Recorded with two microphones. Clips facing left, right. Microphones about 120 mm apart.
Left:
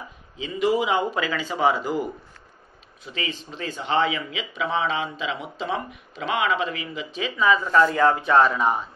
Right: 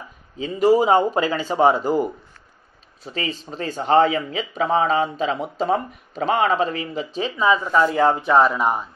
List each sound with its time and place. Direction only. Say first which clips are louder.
0.4 s speech: right 6 dB; 40° right (ahead or behind); by 8.2 s 20° right (ahead or behind)
8.3 s speech: right 2 dB; 5° right (ahead or behind)